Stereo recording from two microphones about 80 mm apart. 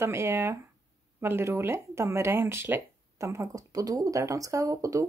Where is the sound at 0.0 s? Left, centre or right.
Right.